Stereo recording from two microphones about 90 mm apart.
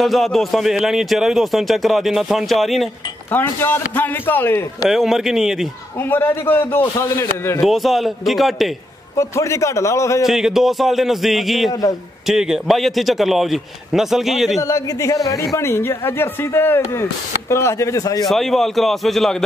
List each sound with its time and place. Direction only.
0.0 s a man's voice: centre (ahead or behind)
3.3 s a man's voice: 25° left (ahead or behind)
4.8 s a man's voice: 5° right (ahead or behind)
6.0 s a man's voice: 25° left (ahead or behind)
7.6 s a man's voice: centre (ahead or behind)
9.1 s speech: 35° left (ahead or behind)
10.2 s a man's voice: 5° right (ahead or behind)
14.6 s speech: 35° left (ahead or behind)
18.3 s a man's voice: centre (ahead or behind)